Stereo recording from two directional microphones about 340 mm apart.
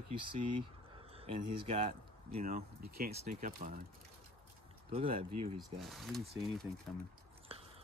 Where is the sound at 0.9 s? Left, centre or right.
Centre.